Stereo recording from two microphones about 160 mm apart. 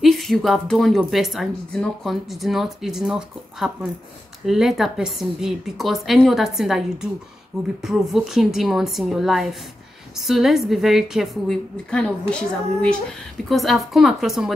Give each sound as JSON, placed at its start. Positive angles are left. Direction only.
{"t": 0.0, "sound": "a woman's voice", "side_deg": 0}